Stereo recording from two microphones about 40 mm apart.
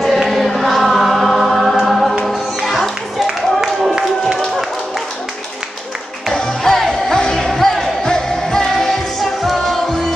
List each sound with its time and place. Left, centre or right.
0.0 s choir: centre
2.3 s music: centre
6.6 s music: centre